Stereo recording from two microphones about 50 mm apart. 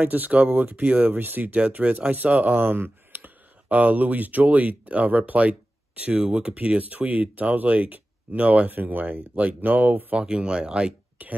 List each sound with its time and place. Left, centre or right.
0.0 s speech: right
3.6 s speech: right
10.1 s speech: centre